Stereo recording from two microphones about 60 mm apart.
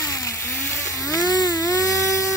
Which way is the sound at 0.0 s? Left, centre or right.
Left.